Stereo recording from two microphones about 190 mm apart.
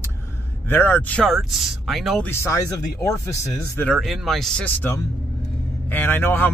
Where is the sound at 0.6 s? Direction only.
10° left (ahead or behind).